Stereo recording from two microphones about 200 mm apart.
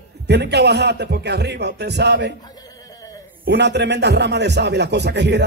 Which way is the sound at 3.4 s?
60° right (ahead or behind).